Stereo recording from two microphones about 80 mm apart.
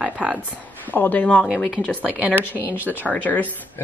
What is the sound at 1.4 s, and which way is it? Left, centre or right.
Speech, centre.